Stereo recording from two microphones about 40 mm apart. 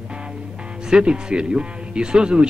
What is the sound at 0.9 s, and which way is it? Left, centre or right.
Speech, right.